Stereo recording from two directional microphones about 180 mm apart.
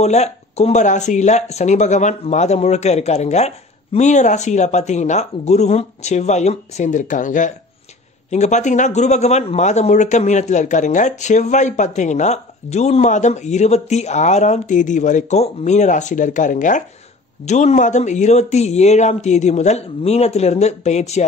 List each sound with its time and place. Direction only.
0.0 s a man's voice: 40° left (ahead or behind)